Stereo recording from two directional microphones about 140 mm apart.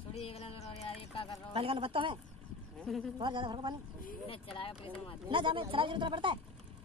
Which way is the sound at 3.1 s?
35° right (ahead or behind).